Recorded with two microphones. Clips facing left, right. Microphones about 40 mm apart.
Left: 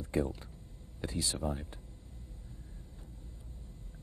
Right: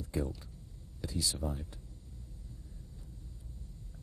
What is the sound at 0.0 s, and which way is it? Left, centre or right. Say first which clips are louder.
Speech: left 4 dB; left.